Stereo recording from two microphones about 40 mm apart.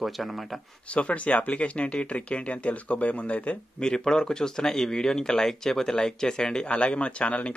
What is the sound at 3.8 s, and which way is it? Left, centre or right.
Speech, centre.